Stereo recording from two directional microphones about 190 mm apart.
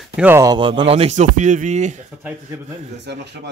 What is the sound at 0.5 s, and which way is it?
Speech, 25° right (ahead or behind).